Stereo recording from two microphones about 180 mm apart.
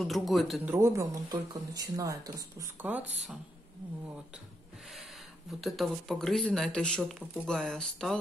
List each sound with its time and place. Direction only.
0.0 s speech: centre (ahead or behind)
0.7 s speech: 15° right (ahead or behind)
5.5 s speech: centre (ahead or behind)